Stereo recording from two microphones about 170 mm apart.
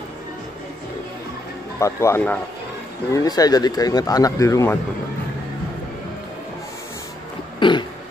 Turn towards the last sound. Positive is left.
turn(degrees=25)  # may be behind; listen again after turning